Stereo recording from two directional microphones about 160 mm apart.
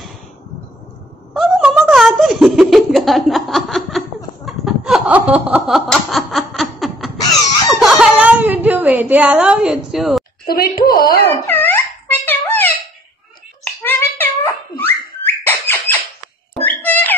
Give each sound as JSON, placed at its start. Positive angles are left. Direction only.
{"t": 1.3, "sound": "a sound", "side_deg": 0}
{"t": 4.5, "sound": "snicker", "side_deg": -5}
{"t": 7.8, "sound": "whimper", "side_deg": -5}
{"t": 10.4, "sound": "a woman's voice", "side_deg": 70}
{"t": 11.4, "sound": "dog", "side_deg": 15}
{"t": 13.8, "sound": "whistling", "side_deg": 10}
{"t": 16.6, "sound": "cat", "side_deg": 10}